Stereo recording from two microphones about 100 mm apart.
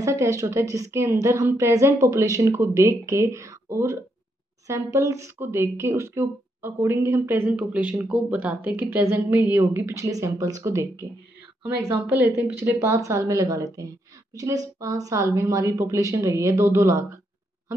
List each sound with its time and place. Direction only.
0.0 s a woman's voice: 30° right (ahead or behind); by 8.6 s 10° right (ahead or behind)
8.6 s a woman's voice: 25° right (ahead or behind)